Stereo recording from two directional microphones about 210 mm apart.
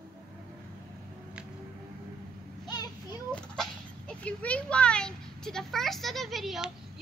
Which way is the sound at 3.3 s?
5° left (ahead or behind).